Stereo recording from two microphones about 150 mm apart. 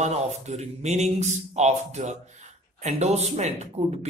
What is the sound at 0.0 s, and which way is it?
Speech, 45° right (ahead or behind).